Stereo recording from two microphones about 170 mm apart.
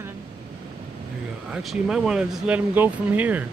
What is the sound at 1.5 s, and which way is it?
Speech, 5° right (ahead or behind).